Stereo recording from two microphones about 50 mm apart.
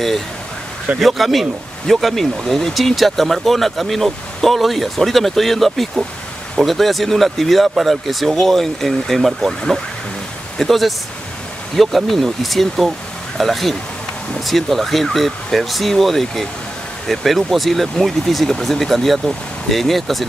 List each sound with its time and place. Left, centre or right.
0.9 s speech: centre